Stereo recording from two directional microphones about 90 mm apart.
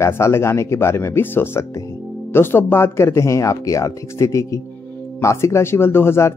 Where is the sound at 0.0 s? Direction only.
30° left (ahead or behind).